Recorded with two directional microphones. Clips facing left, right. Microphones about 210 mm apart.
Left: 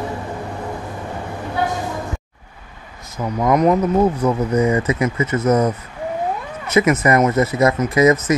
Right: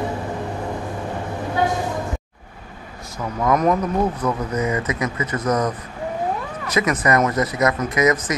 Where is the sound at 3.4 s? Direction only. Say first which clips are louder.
Left 3 dB; 20° left (ahead or behind).